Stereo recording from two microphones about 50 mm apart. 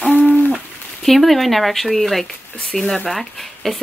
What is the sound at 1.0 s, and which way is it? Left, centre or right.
Speech, centre.